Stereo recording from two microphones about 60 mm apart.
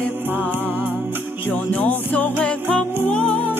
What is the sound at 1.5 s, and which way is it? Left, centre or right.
Music, left.